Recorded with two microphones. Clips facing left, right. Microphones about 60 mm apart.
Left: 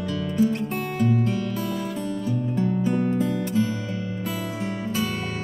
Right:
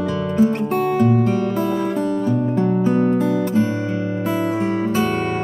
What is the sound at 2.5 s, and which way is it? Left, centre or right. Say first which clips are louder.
Music: right 3 dB; right.